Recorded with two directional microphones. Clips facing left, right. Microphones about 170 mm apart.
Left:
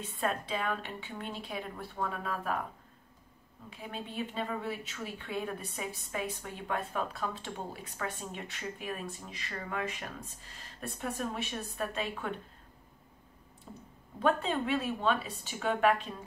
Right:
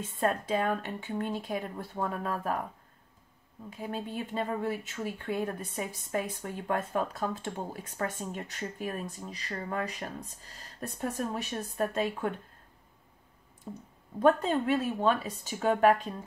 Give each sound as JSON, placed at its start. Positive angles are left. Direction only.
{"t": 0.2, "sound": "speech", "side_deg": -45}
{"t": 3.7, "sound": "speech", "side_deg": -45}
{"t": 14.2, "sound": "speech", "side_deg": -40}